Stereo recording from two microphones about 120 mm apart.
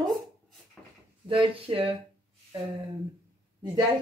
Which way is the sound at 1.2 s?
45° right (ahead or behind).